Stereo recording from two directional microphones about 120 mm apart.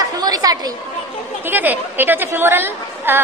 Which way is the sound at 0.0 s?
35° right (ahead or behind).